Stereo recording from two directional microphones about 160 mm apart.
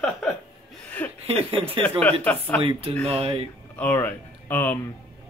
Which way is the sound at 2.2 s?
10° left (ahead or behind).